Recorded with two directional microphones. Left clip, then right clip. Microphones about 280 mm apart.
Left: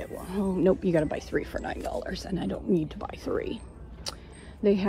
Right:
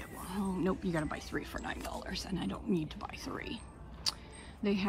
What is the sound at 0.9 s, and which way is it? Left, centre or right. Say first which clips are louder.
Speech: left 10 dB; right.